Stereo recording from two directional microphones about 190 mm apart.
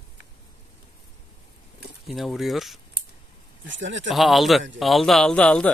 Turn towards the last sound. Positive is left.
turn(degrees=5)  # may be behind; listen again after turning